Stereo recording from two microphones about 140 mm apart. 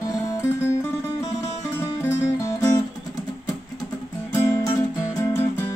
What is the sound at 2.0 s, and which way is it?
Music, 20° left (ahead or behind).